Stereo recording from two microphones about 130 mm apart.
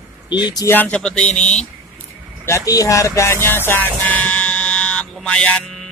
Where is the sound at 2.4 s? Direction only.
25° left (ahead or behind).